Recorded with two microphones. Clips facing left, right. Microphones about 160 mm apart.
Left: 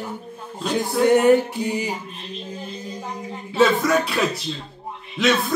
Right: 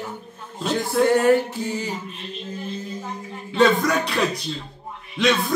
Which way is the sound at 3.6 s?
Centre (ahead or behind).